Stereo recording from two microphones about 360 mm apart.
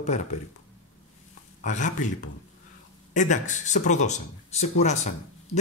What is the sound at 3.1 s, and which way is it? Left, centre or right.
Speech, centre.